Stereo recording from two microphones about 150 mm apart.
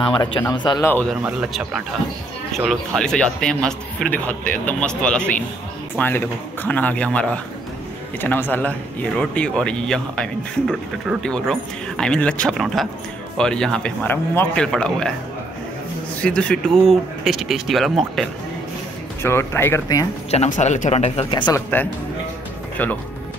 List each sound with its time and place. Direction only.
0.0 s speech: 35° left (ahead or behind)
0.8 s speech: 10° left (ahead or behind)
1.2 s a man's voice: 5° right (ahead or behind)
16.2 s a man's voice: 5° left (ahead or behind)
19.2 s speech: 15° left (ahead or behind)
20.2 s speech: 50° left (ahead or behind)
21.3 s speech: 30° left (ahead or behind)
21.5 s speech: 10° left (ahead or behind)